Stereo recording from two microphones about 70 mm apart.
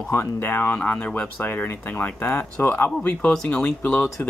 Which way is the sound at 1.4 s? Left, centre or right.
Left.